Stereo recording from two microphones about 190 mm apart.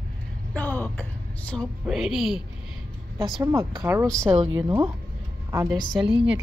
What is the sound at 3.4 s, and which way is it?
Speech, 15° right (ahead or behind).